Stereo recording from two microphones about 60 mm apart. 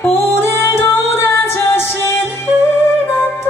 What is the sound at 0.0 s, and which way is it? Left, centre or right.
Music, left.